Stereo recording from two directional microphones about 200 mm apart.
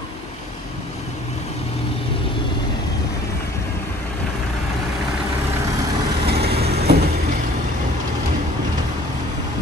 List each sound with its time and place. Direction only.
6.2 s vehicle: 50° right (ahead or behind)